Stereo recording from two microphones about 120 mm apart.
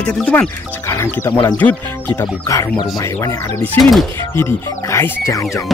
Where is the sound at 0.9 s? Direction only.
20° left (ahead or behind).